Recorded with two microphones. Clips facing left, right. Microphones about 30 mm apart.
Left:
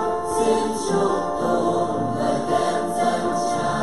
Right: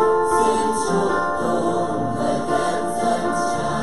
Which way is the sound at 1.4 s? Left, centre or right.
Centre.